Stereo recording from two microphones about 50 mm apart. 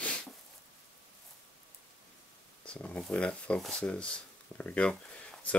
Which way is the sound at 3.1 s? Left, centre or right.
Centre.